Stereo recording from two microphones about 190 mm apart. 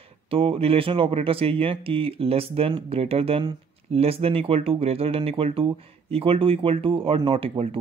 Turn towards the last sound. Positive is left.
turn(degrees=-30)  # may be behind; listen again after turning